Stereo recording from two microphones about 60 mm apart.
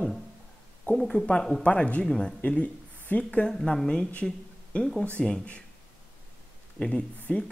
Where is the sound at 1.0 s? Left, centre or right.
Centre.